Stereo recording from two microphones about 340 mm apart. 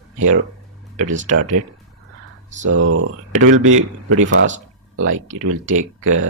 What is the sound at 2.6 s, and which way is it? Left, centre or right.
Speech, right.